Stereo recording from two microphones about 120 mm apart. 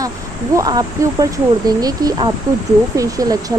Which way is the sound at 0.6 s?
35° right (ahead or behind).